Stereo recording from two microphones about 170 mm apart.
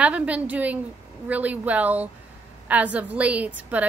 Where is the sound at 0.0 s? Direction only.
10° right (ahead or behind).